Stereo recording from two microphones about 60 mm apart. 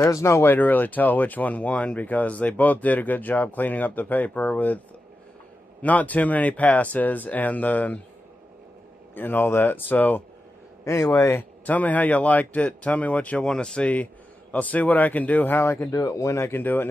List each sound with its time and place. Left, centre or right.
0.0 s speech: left
0.5 s speech: left
5.8 s speech: left
9.1 s speech: left
10.8 s a sound: left
11.6 s speech: left
15.6 s speech: left
15.9 s speech: left
16.6 s speech: left